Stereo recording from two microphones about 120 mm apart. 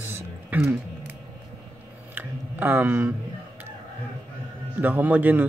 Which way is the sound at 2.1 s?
15° right (ahead or behind).